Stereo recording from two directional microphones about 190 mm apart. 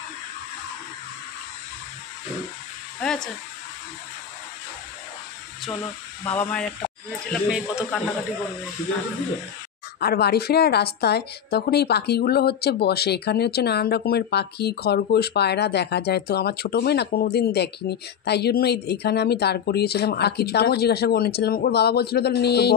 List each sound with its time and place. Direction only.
3.0 s speech: 5° left (ahead or behind)
6.2 s speech: 10° left (ahead or behind)
7.1 s speech: 5° right (ahead or behind)
9.9 s a woman's voice: 55° left (ahead or behind)